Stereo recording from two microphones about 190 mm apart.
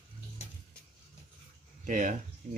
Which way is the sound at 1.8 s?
45° right (ahead or behind).